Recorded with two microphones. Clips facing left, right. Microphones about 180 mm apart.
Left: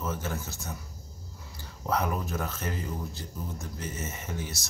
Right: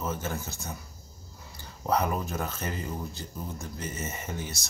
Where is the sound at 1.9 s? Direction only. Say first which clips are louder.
Right 2 dB; centre (ahead or behind).